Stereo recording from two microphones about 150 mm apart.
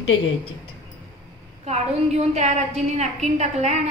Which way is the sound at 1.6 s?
45° right (ahead or behind).